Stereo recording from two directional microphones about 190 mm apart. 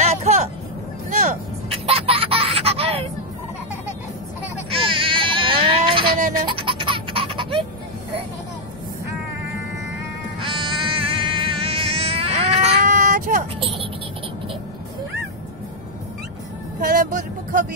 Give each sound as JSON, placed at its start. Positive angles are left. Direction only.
{"t": 0.0, "sound": "vehicle", "side_deg": -40}
{"t": 1.2, "sound": "baby laughter", "side_deg": -35}
{"t": 4.6, "sound": "a sound", "side_deg": -30}
{"t": 6.3, "sound": "music", "side_deg": -25}
{"t": 10.4, "sound": "a sound", "side_deg": -25}
{"t": 13.6, "sound": "vehicle", "side_deg": -30}
{"t": 16.8, "sound": "vehicle", "side_deg": -45}